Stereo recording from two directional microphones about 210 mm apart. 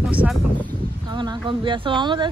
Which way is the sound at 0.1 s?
5° right (ahead or behind).